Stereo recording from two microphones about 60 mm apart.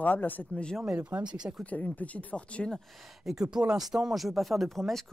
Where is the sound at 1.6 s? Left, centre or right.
Left.